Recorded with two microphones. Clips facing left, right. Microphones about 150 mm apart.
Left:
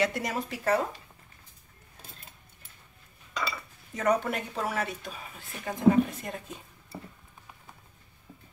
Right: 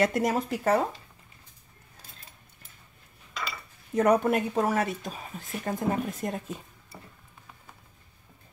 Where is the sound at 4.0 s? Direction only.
55° right (ahead or behind).